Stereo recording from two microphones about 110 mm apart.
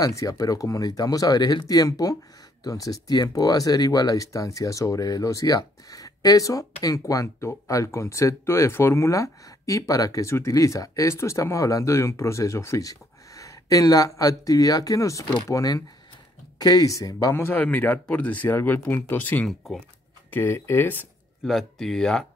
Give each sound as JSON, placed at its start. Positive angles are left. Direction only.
{"t": 0.0, "sound": "speech", "side_deg": 30}
{"t": 17.4, "sound": "speech", "side_deg": 15}
{"t": 21.5, "sound": "speech", "side_deg": 5}